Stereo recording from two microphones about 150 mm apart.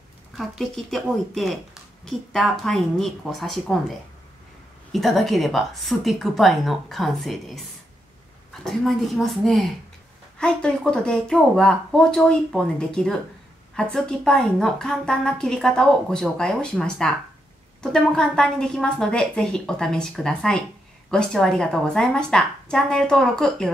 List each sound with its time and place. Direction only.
0.4 s a woman's voice: centre (ahead or behind)
4.9 s a woman's voice: centre (ahead or behind)
8.6 s a woman's voice: centre (ahead or behind)